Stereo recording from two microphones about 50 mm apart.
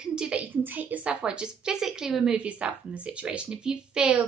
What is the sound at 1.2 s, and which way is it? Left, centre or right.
Speech, centre.